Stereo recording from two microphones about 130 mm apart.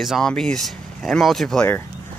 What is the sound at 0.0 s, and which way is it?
Speech, centre (ahead or behind).